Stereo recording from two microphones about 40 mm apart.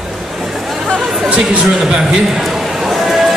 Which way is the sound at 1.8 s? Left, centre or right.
Centre.